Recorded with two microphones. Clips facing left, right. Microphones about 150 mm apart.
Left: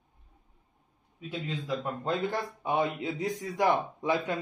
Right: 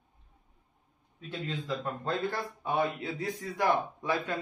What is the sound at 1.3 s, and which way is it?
A man's voice, 15° left (ahead or behind).